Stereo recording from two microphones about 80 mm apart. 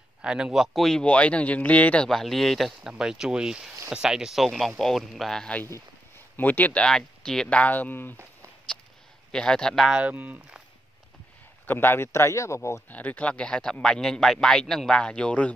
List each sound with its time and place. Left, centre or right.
0.2 s speech: centre
1.0 s speech: centre
2.0 s speech: centre
2.9 s speech: centre
6.3 s speech: left
9.3 s speech: centre
10.0 s speech: centre
11.6 s a man's voice: left
12.9 s speech: centre